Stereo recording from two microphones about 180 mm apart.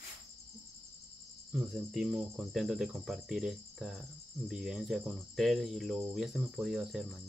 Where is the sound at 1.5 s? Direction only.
5° right (ahead or behind).